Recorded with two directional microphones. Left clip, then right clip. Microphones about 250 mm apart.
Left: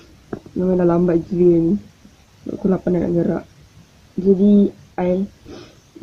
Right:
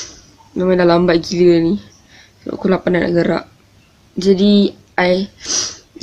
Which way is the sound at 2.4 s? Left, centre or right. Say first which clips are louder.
Right 5 dB; centre.